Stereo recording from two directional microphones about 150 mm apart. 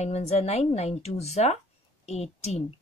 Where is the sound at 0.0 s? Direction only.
45° left (ahead or behind).